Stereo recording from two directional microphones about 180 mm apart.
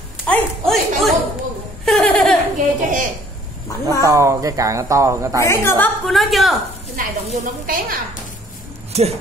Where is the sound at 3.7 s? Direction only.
20° left (ahead or behind).